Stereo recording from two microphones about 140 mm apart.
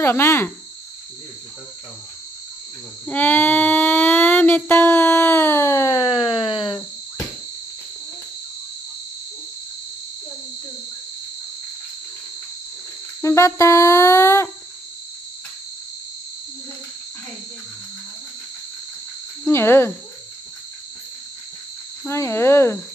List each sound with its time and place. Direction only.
0.0 s speech: 20° left (ahead or behind)
3.1 s a sound: 10° left (ahead or behind); by 7.2 s 30° left (ahead or behind)
13.2 s music: 20° left (ahead or behind)
19.4 s speech: 15° left (ahead or behind)
22.0 s music: 20° left (ahead or behind)